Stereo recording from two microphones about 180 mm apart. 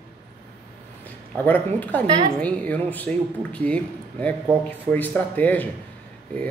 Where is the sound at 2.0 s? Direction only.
25° right (ahead or behind).